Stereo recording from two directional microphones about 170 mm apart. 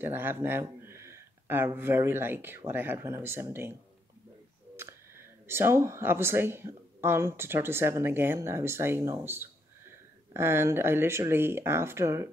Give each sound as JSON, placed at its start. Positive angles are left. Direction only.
{"t": 0.0, "sound": "speech", "side_deg": -10}
{"t": 4.7, "sound": "speech", "side_deg": -15}